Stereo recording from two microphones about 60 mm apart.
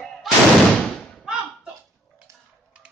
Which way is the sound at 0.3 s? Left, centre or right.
Centre.